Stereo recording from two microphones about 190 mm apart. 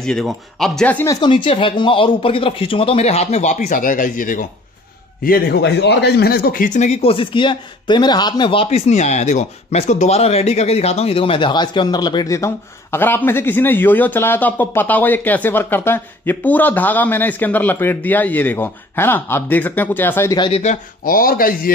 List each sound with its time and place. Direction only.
0.0 s a man's voice: centre (ahead or behind)
20.3 s speech: 25° left (ahead or behind)
20.6 s speech: 45° left (ahead or behind)